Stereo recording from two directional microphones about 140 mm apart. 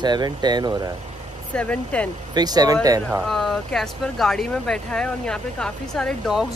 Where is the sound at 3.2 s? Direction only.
Centre (ahead or behind).